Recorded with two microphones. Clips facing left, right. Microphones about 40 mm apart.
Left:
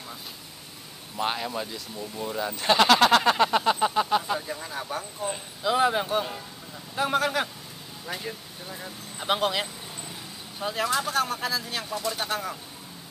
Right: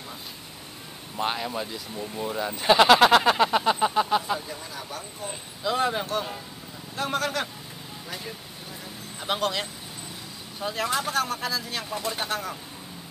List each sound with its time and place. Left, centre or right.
1.2 s speech: centre
4.5 s a sound: left
5.2 s a sound: centre
7.0 s vehicle: centre
8.1 s a sound: centre
8.8 s vehicle: centre
10.6 s speech: centre
11.9 s speech: centre
12.3 s speech: centre